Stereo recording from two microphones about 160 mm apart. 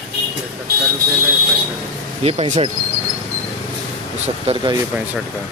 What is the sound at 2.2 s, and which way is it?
Speech, 40° right (ahead or behind).